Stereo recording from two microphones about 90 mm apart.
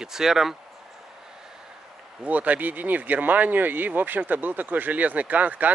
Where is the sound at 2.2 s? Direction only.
15° right (ahead or behind).